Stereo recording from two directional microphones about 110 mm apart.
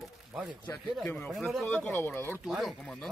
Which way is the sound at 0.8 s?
Centre (ahead or behind).